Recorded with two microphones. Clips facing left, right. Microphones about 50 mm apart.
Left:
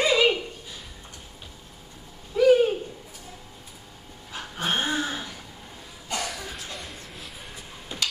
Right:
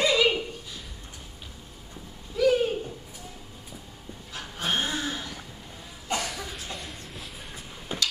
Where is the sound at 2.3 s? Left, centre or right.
Left.